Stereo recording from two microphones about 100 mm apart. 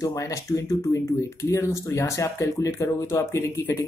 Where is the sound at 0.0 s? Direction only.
35° left (ahead or behind).